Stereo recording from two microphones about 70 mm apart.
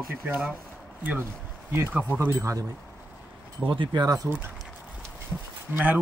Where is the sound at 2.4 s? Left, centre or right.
Right.